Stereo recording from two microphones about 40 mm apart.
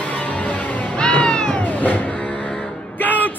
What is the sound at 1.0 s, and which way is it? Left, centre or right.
Music, left.